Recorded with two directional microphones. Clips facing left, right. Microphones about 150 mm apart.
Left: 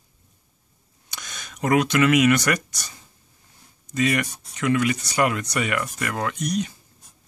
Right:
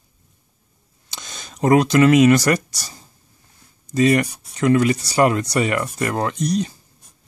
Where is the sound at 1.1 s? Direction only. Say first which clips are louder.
Right 2 dB; 30° right (ahead or behind).